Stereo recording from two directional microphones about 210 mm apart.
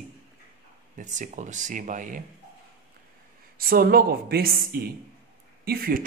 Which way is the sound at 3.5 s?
45° right (ahead or behind).